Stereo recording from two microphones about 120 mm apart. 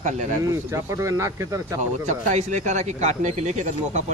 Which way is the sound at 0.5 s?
25° right (ahead or behind).